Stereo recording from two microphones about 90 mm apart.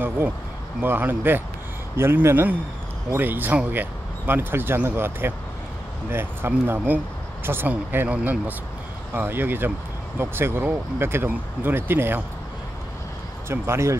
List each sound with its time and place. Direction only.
0.2 s speech: 25° right (ahead or behind)
13.5 s speech: 30° right (ahead or behind)